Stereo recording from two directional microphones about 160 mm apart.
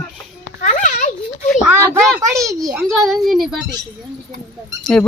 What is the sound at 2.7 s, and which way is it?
Speech, centre (ahead or behind).